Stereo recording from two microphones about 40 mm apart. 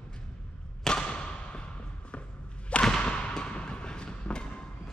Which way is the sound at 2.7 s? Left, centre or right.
Centre.